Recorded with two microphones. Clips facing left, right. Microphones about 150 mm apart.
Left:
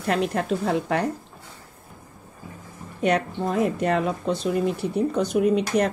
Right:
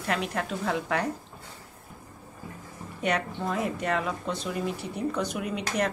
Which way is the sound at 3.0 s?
40° left (ahead or behind).